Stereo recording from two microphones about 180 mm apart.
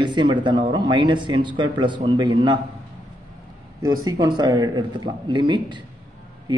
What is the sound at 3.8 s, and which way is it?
Speech, 20° right (ahead or behind).